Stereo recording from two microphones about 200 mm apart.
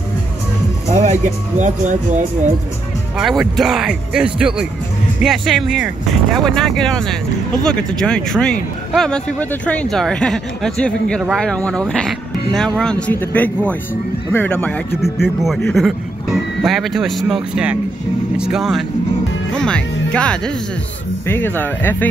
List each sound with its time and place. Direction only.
0.8 s speech: 35° right (ahead or behind)
3.2 s speech: centre (ahead or behind)